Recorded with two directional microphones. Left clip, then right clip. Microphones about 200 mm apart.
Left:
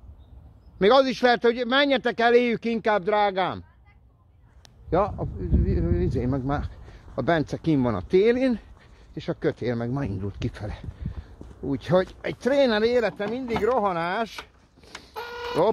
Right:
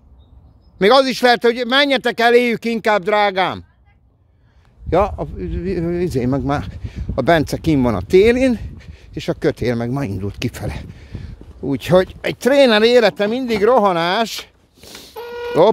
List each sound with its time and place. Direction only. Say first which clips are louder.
0.7 s speech: right 6 dB; 30° right (ahead or behind)
4.8 s speech: right 7 dB; 45° right (ahead or behind)